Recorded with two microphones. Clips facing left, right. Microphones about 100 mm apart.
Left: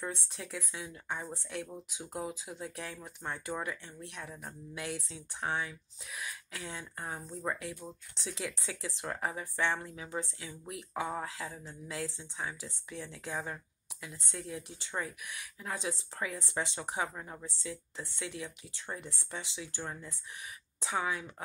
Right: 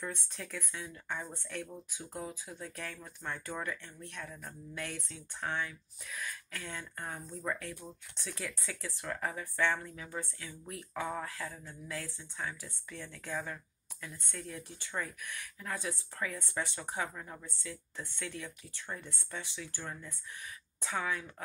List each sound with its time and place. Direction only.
0.0 s speech: 15° left (ahead or behind)